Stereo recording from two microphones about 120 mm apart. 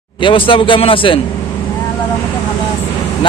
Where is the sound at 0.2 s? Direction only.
45° left (ahead or behind).